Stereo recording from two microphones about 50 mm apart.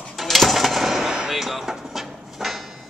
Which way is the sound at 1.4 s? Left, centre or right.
Centre.